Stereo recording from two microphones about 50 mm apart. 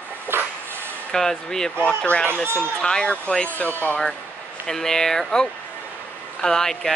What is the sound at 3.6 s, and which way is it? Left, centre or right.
Speech, left.